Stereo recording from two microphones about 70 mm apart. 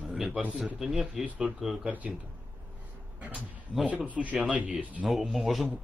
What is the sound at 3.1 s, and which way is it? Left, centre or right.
Speech, right.